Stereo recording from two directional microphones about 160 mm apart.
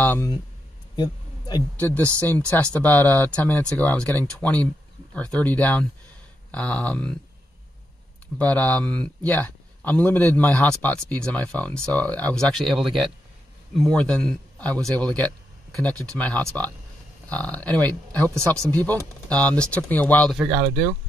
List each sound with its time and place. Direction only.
0.0 s speech: 10° left (ahead or behind)
0.9 s a sound: 25° left (ahead or behind)
1.8 s a man's voice: 10° left (ahead or behind)
8.4 s a man's voice: 10° left (ahead or behind)